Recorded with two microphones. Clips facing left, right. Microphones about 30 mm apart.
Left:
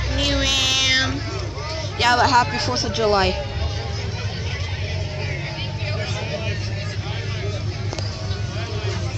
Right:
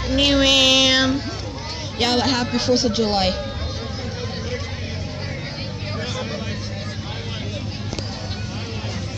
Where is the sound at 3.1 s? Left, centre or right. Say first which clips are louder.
Left 2 dB; right.